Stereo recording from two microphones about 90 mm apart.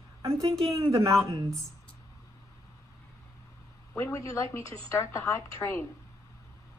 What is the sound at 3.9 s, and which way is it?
A woman's voice, 35° left (ahead or behind).